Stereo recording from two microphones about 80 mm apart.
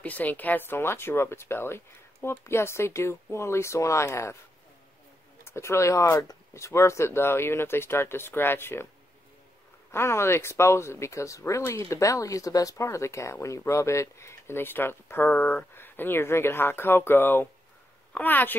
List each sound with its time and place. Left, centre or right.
0.0 s speech: left
5.4 s speech: left
9.8 s speech: left